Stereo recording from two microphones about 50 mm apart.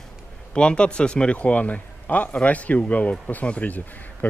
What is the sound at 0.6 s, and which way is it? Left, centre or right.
A man's voice, centre.